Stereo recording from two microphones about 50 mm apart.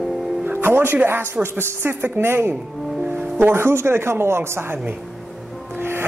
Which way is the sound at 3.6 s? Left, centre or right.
Right.